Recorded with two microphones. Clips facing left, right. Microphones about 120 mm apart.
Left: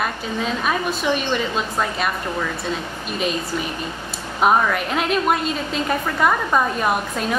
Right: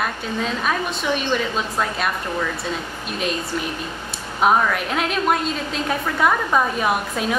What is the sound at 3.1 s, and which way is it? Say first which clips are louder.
A woman's voice: left 1 dB; centre (ahead or behind).